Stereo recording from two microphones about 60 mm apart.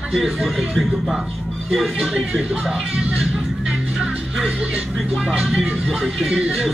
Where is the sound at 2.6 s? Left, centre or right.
Centre.